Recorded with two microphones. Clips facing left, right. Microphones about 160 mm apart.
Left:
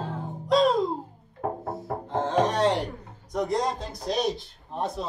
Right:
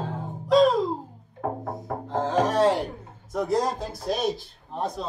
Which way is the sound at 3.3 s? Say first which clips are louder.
Right 2 dB; 5° right (ahead or behind).